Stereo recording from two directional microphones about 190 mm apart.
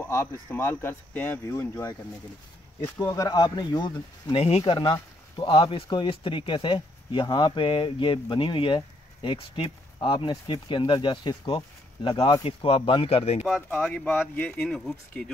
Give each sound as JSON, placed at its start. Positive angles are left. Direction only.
{"t": 0.0, "sound": "speech", "side_deg": 10}
{"t": 13.4, "sound": "speech", "side_deg": 0}